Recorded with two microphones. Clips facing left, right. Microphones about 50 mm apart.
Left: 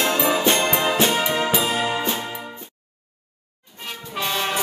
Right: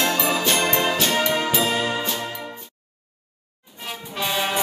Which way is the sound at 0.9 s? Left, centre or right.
Left.